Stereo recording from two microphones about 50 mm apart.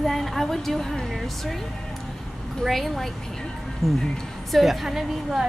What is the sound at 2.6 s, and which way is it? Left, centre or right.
Speech, centre.